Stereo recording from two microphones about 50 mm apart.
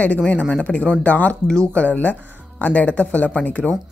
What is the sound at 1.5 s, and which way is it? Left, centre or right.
Speech, centre.